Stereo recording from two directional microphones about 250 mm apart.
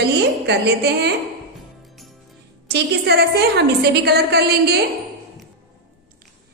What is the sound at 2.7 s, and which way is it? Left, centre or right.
A woman's voice, right.